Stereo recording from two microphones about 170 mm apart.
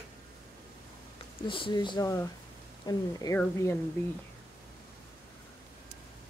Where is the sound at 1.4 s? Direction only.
30° left (ahead or behind); by 3.7 s 10° left (ahead or behind).